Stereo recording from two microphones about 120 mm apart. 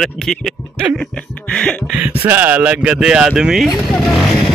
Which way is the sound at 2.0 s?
15° right (ahead or behind).